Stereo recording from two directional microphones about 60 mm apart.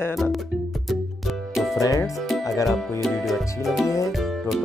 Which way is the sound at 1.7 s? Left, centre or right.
Left.